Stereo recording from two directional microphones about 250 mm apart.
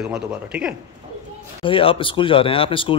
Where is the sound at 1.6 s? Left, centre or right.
Left.